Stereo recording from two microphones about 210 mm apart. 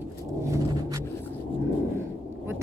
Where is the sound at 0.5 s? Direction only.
15° right (ahead or behind).